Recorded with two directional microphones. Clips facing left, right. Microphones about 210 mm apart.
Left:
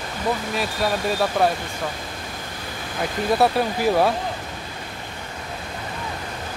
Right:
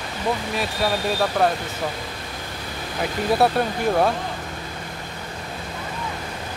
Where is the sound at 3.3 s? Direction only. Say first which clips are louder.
Even; centre (ahead or behind).